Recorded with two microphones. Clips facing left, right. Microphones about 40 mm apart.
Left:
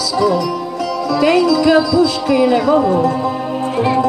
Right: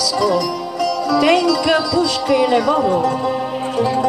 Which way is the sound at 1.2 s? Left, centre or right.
Right.